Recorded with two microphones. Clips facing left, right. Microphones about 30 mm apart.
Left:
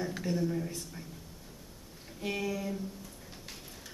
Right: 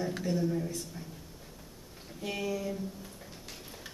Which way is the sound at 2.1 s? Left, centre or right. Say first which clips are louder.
Even; centre.